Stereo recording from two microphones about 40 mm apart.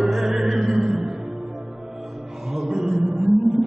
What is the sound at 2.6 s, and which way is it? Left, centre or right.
Chant, centre.